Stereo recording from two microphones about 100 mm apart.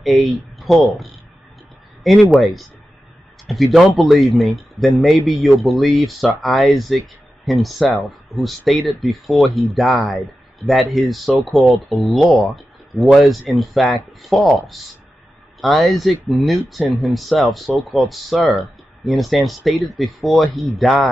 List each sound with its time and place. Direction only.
0.0 s speech: centre (ahead or behind)
2.3 s speech: centre (ahead or behind)
15.6 s speech: centre (ahead or behind)